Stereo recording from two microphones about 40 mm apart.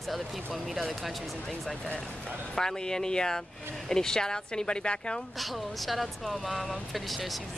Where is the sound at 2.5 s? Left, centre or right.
Centre.